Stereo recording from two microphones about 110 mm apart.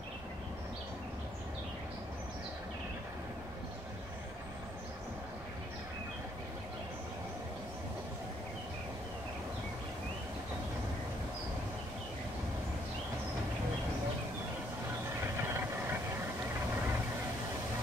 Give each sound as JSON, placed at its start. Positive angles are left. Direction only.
{"t": 15.5, "sound": "vehicle", "side_deg": -20}